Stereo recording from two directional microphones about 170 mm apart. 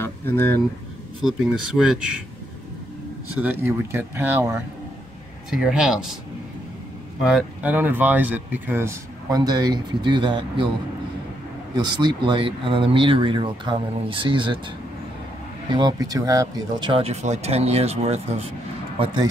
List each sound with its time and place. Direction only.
0.0 s a sound: 10° left (ahead or behind)
1.8 s speech: 5° right (ahead or behind)
3.3 s speech: 10° right (ahead or behind)
7.2 s speech: 5° right (ahead or behind); by 10.7 s 30° right (ahead or behind)
11.7 s speech: 25° right (ahead or behind)
15.7 s speech: 25° right (ahead or behind)